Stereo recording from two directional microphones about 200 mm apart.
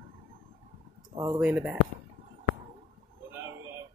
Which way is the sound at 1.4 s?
5° right (ahead or behind).